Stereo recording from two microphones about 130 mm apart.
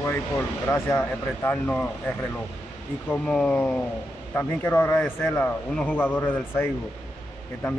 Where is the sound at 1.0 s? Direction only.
15° left (ahead or behind).